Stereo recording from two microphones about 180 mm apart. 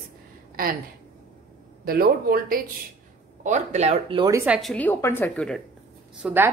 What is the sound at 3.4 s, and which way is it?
Speech, 40° right (ahead or behind).